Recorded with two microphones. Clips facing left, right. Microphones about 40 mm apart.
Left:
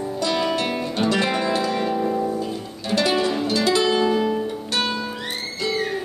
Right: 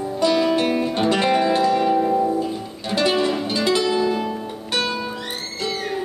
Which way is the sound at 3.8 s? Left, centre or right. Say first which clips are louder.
Left 1 dB; centre.